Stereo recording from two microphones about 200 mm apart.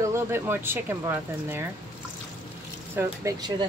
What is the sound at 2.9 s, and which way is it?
Speech, 15° right (ahead or behind).